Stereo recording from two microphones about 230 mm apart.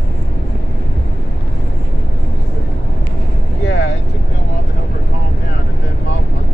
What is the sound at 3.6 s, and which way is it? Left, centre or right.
Vehicle, left.